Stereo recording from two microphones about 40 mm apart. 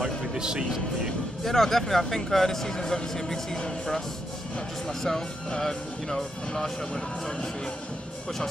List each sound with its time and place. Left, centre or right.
0.0 s a man's voice: centre
1.4 s speech: centre